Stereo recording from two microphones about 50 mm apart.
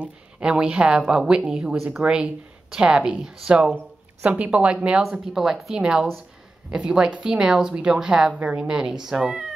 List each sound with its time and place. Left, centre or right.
0.0 s a woman's voice: centre
4.2 s speech: right
5.3 s a woman's voice: centre
8.4 s a woman's voice: right